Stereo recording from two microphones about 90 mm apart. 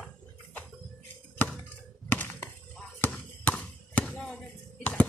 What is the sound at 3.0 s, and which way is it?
Basketball bounce, 20° left (ahead or behind).